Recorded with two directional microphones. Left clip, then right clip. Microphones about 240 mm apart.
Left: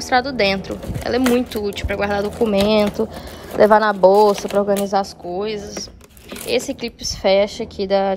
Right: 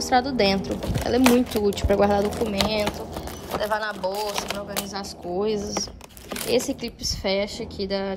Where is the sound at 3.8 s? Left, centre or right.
Left.